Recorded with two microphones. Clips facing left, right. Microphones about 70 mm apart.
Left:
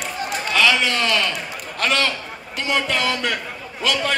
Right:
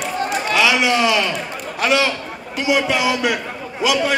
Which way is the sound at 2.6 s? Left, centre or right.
Centre.